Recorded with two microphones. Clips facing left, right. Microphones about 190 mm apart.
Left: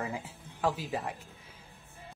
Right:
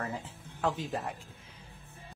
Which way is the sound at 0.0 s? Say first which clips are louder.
Left 1 dB; 10° left (ahead or behind).